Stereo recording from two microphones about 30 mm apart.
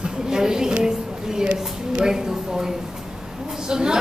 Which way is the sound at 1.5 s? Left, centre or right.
Right.